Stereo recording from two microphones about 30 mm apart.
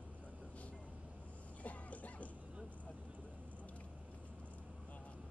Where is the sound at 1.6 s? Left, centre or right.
Left.